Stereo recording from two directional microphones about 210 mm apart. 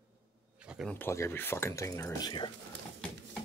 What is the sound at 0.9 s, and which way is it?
Speech, 10° left (ahead or behind).